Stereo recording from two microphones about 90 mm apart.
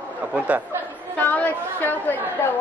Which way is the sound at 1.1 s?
20° left (ahead or behind).